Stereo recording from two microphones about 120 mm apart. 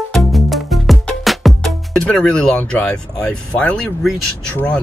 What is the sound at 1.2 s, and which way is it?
Speech, centre (ahead or behind).